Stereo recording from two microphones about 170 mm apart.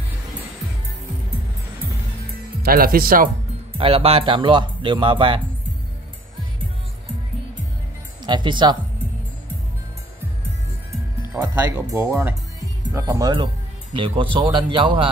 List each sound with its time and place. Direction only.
2.6 s speech: 60° right (ahead or behind)
3.7 s speech: 35° right (ahead or behind)
8.2 s speech: 25° right (ahead or behind)
11.3 s speech: 15° right (ahead or behind)